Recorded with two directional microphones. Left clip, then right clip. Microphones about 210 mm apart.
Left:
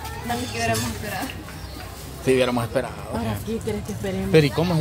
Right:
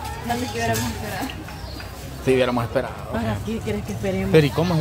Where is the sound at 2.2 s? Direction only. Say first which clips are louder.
Right 1 dB; 5° left (ahead or behind).